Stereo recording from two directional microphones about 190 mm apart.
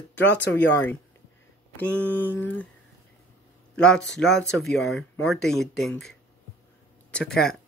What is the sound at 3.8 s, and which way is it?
Speech, 5° left (ahead or behind).